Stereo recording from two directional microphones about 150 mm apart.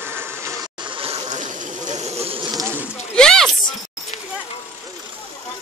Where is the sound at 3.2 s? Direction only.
5° left (ahead or behind).